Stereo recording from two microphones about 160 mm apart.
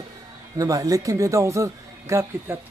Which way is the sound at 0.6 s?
20° right (ahead or behind).